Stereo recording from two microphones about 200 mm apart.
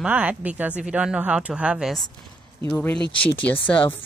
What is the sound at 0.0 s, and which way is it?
Speech, 5° right (ahead or behind).